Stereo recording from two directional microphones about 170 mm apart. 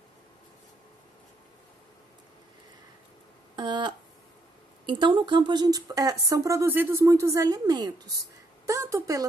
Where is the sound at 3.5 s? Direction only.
25° right (ahead or behind).